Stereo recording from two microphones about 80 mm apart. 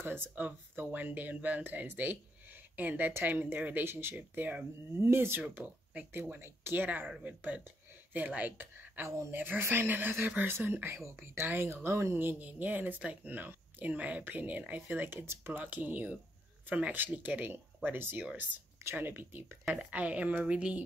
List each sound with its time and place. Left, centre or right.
0.0 s speech: right
5.4 s a woman's voice: centre